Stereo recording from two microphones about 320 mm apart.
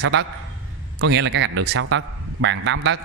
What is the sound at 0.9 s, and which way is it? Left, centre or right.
A man's voice, right.